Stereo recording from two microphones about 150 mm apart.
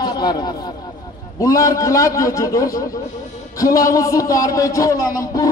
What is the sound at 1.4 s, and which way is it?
Speech, 20° left (ahead or behind).